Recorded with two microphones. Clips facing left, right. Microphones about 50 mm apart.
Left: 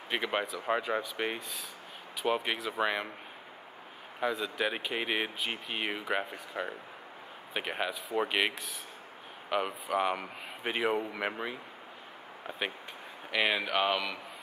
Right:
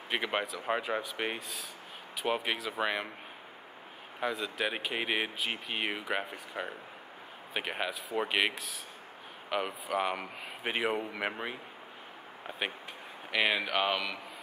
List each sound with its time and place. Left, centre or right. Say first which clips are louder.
0.1 s speech: left 1 dB; centre
4.2 s speech: left 2 dB; centre